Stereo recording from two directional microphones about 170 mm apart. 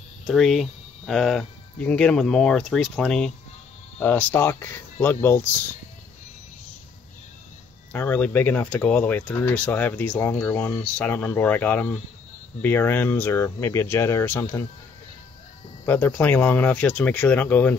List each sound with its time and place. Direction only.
0.3 s speech: centre (ahead or behind)
7.9 s speech: 10° left (ahead or behind)
15.8 s speech: 10° left (ahead or behind)